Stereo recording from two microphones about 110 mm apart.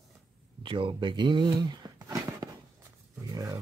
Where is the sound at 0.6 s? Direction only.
50° right (ahead or behind); by 2.5 s 30° right (ahead or behind).